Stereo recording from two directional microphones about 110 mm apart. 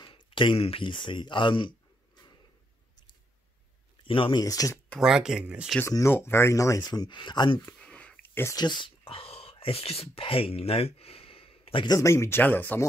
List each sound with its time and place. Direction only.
0.0 s speech: 50° left (ahead or behind)
2.2 s a sound: 40° left (ahead or behind)
4.1 s speech: 50° left (ahead or behind)
4.4 s speech: 35° left (ahead or behind)
5.0 s speech: 5° right (ahead or behind)
5.9 s speech: 25° left (ahead or behind)
6.9 s speech: 45° left (ahead or behind)
7.6 s a sound: 10° left (ahead or behind)
8.5 s speech: 45° left (ahead or behind)
11.9 s speech: 25° left (ahead or behind)